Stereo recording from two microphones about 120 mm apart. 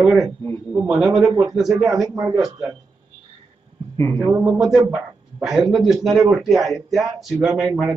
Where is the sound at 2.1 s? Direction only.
30° right (ahead or behind).